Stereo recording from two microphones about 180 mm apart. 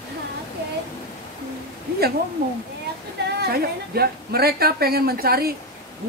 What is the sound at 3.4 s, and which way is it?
A woman's voice, 60° right (ahead or behind).